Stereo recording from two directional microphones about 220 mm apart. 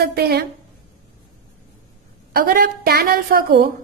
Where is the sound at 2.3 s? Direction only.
45° right (ahead or behind).